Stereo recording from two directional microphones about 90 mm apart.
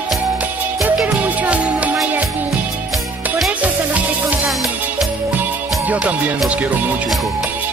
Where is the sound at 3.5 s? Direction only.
15° right (ahead or behind).